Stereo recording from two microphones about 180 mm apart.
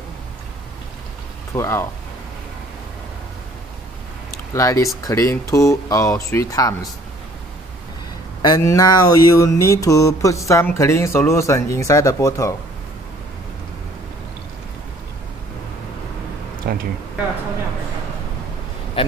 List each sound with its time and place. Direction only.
1.5 s mantra: 15° left (ahead or behind)
4.6 s mantra: 15° left (ahead or behind)
8.4 s mantra: 20° left (ahead or behind)
16.6 s a sound: 60° right (ahead or behind)
19.0 s a man's voice: 30° left (ahead or behind)